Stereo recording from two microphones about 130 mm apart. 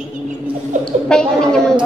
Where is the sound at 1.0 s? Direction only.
5° left (ahead or behind).